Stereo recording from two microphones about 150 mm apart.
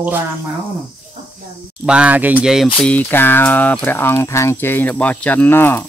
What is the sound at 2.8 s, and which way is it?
Speech, 10° left (ahead or behind).